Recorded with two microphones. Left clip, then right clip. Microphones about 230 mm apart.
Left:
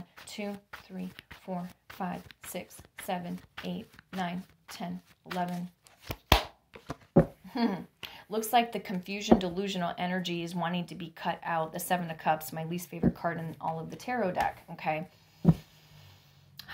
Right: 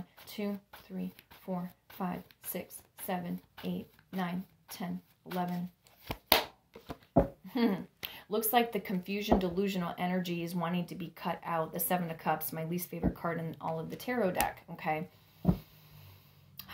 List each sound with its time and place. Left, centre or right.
0.1 s speech: left
6.0 s chopping: left
7.5 s speech: left